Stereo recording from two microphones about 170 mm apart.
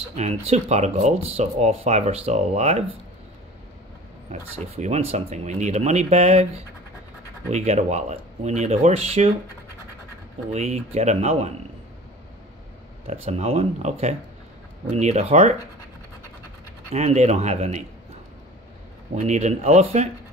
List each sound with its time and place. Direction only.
0.1 s speech: 40° right (ahead or behind)
4.3 s speech: 40° right (ahead or behind)
10.5 s speech: 40° right (ahead or behind)
13.0 s speech: 35° right (ahead or behind)
16.9 s speech: 40° right (ahead or behind)
19.1 s speech: 45° right (ahead or behind)